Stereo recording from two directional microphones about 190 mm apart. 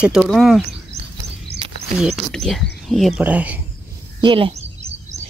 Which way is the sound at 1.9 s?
Centre (ahead or behind).